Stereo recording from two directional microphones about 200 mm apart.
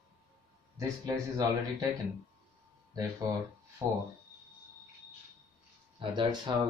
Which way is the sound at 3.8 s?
15° right (ahead or behind).